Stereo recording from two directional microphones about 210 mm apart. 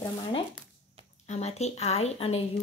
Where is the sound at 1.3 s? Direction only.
30° left (ahead or behind).